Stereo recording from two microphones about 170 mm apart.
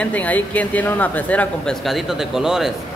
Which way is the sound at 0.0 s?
10° left (ahead or behind).